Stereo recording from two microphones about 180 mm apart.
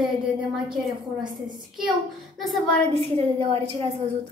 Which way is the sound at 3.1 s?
35° right (ahead or behind).